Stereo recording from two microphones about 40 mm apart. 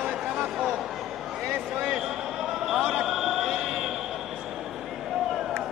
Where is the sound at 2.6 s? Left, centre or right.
Centre.